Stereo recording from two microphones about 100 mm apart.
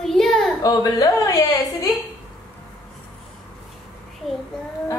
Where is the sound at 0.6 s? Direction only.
40° left (ahead or behind).